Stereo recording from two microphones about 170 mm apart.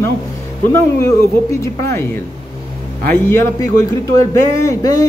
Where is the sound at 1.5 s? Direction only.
15° left (ahead or behind).